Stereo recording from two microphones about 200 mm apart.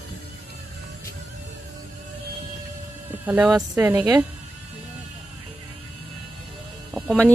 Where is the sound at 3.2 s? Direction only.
5° right (ahead or behind).